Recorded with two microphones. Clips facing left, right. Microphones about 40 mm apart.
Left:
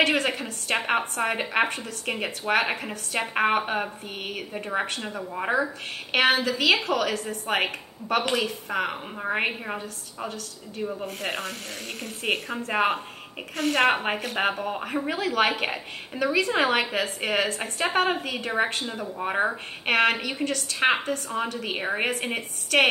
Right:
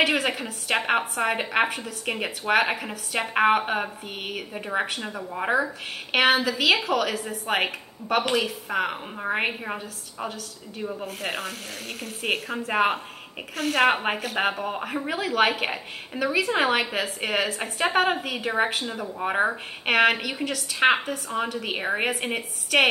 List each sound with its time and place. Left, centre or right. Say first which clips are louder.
0.0 s a woman's voice: even; centre